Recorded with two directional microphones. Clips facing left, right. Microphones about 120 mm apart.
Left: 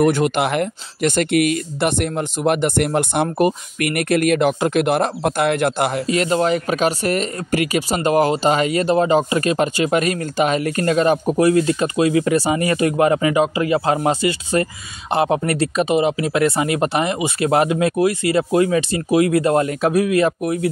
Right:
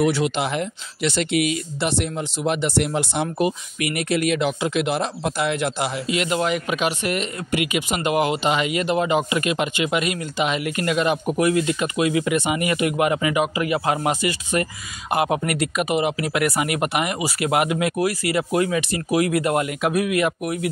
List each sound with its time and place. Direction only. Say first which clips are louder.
0.0 s speech: left 4 dB; 50° left (ahead or behind); by 20.7 s 30° left (ahead or behind)